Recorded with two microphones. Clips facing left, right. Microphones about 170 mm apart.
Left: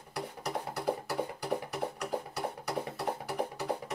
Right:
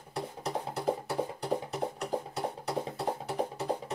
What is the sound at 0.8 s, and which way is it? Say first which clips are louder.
Music: right 2 dB; 25° right (ahead or behind).